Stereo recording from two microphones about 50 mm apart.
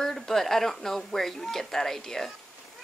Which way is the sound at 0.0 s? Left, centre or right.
Centre.